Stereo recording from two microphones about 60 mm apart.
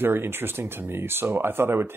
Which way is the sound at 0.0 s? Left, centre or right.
Right.